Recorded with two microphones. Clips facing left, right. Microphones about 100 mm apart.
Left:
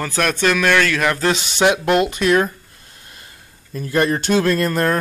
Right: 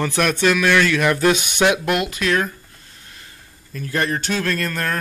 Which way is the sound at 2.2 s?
15° left (ahead or behind).